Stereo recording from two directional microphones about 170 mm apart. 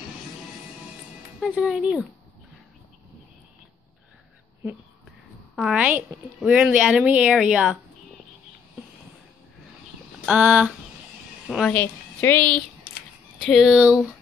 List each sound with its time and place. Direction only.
1.4 s speech: centre (ahead or behind)
5.6 s speech: 5° right (ahead or behind)
10.2 s a woman's voice: 5° right (ahead or behind)
11.7 s a woman's voice: 10° left (ahead or behind)
12.9 s a sound: 60° left (ahead or behind)
13.5 s speech: 5° right (ahead or behind)